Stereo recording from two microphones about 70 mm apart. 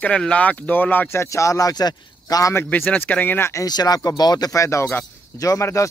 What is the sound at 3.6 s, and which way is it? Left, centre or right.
Speech, left.